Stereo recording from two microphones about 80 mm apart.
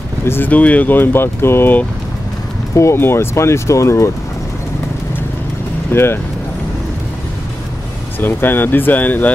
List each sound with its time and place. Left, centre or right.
0.2 s vehicle: left
0.5 s speech: centre; by 4.1 s left
5.9 s vehicle: left
8.2 s speech: left